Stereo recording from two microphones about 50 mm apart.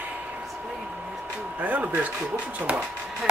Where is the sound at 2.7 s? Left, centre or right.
Right.